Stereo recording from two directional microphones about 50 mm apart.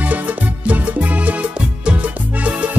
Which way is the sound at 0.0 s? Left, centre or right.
Right.